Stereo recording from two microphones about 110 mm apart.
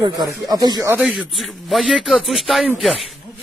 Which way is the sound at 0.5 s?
35° right (ahead or behind).